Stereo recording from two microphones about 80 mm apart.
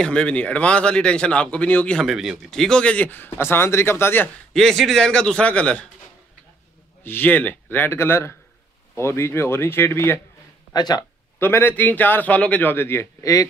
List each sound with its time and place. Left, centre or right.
0.0 s a man's voice: centre
2.0 s speech: centre
2.5 s speech: centre; by 4.3 s left
4.6 s a man's voice: centre
7.0 s speech: left
10.7 s speech: left
11.3 s speech: left
13.2 s a man's voice: left